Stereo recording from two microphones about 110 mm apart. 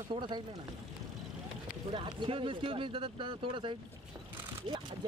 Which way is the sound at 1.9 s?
55° right (ahead or behind).